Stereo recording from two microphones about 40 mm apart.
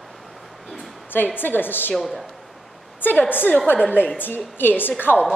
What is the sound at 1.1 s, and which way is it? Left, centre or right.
Speech, left.